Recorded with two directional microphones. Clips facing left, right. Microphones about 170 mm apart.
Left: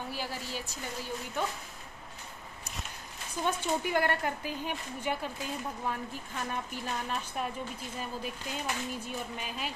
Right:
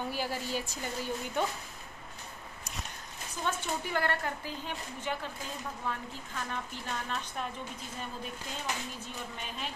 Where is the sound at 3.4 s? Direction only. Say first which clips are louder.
Left 4 dB; 15° left (ahead or behind).